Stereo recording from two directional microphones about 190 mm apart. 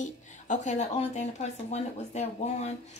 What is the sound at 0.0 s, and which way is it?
A woman's voice, 40° left (ahead or behind).